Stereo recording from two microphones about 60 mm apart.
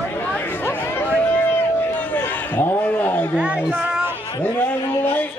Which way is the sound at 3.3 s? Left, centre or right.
Right.